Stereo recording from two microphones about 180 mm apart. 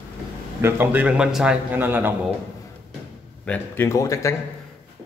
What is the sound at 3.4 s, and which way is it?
Speech, 10° left (ahead or behind).